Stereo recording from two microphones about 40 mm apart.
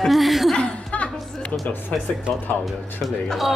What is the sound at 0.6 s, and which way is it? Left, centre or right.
Chuckle, left.